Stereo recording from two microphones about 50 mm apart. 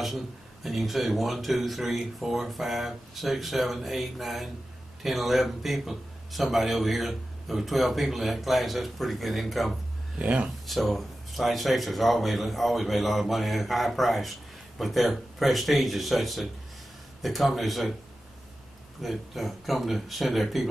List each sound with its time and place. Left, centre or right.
0.7 s a man's voice: centre
10.1 s speech: right
10.7 s a man's voice: centre
18.9 s a man's voice: centre